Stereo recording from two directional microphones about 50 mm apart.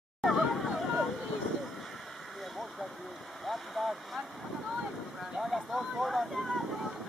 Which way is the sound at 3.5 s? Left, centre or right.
Centre.